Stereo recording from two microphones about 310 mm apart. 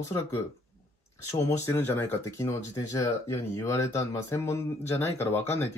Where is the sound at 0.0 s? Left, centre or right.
Centre.